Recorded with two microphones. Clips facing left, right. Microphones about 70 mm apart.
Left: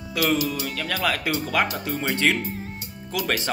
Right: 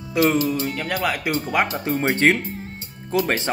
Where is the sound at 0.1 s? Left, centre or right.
Right.